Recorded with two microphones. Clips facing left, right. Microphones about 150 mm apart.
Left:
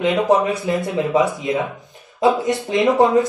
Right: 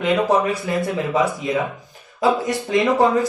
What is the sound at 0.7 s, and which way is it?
Speech, 20° left (ahead or behind).